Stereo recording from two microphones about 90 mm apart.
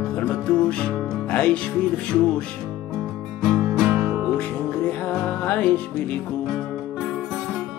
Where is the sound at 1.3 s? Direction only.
15° left (ahead or behind).